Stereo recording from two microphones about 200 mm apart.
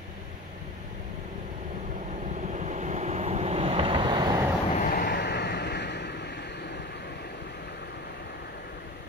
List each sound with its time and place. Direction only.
2.5 s vehicle: 35° right (ahead or behind); by 4.5 s 20° right (ahead or behind)
4.7 s vehicle: 45° left (ahead or behind)